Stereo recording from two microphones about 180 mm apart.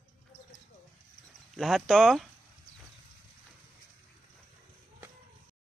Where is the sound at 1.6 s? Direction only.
Centre (ahead or behind).